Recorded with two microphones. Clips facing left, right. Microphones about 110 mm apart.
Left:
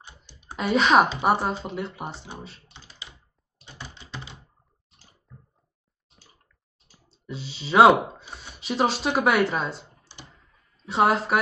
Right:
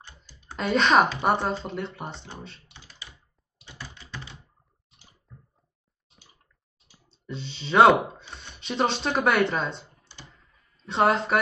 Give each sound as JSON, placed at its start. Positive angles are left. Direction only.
{"t": 0.0, "sound": "computer keyboard", "side_deg": 15}
{"t": 1.2, "sound": "speech", "side_deg": 5}
{"t": 3.6, "sound": "computer keyboard", "side_deg": 20}
{"t": 7.1, "sound": "speech", "side_deg": 5}
{"t": 10.3, "sound": "a sound", "side_deg": 0}